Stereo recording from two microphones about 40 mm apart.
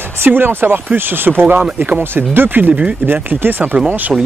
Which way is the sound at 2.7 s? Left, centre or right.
Right.